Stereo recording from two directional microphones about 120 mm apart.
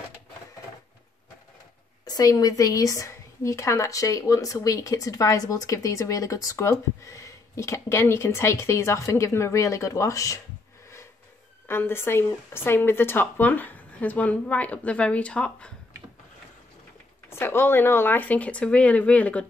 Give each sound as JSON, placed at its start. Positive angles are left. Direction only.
{"t": 2.0, "sound": "a woman's voice", "side_deg": 30}
{"t": 11.6, "sound": "a woman's voice", "side_deg": 20}
{"t": 17.3, "sound": "a woman's voice", "side_deg": 20}